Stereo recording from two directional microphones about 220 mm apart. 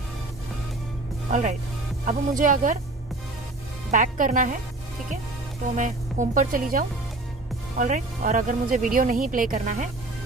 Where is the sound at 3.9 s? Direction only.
35° right (ahead or behind).